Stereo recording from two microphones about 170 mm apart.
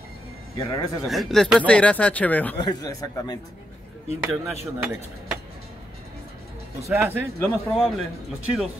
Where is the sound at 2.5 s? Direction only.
20° left (ahead or behind).